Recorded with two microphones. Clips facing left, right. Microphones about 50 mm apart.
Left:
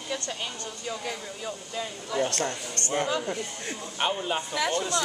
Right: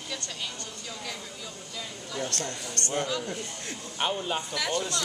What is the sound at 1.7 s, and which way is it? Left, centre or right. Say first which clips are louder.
Speech: left 6 dB; left.